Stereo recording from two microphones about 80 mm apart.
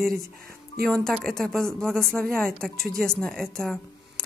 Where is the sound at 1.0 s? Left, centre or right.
Centre.